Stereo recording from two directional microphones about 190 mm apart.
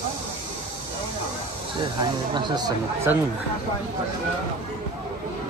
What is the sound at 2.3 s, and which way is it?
Speech, 25° right (ahead or behind).